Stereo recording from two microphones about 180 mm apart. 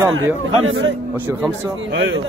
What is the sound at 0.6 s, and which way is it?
Speech, 90° right.